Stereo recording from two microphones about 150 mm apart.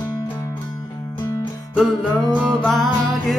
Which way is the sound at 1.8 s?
Centre (ahead or behind).